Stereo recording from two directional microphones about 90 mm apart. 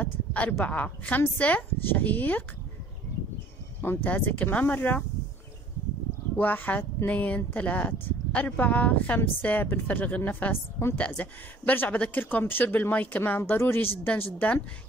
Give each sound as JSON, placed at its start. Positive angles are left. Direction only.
{"t": 0.0, "sound": "a sound", "side_deg": 15}
{"t": 0.7, "sound": "speech", "side_deg": 15}
{"t": 3.8, "sound": "speech", "side_deg": 20}
{"t": 6.3, "sound": "speech", "side_deg": 20}